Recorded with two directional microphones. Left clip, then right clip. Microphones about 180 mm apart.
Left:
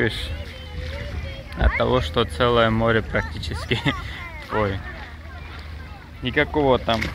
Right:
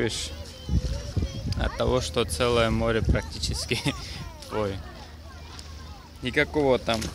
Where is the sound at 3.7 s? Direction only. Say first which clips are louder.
Left 8 dB; 15° right (ahead or behind).